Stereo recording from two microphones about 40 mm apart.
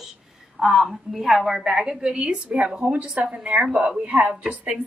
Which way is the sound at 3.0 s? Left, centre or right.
Right.